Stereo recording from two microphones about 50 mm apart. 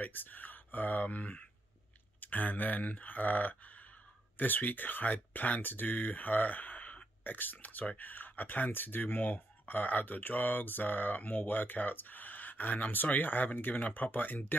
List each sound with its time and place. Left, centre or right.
0.0 s speech: left